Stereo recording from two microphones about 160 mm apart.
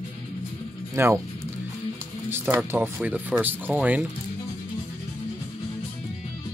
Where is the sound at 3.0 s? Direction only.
10° right (ahead or behind).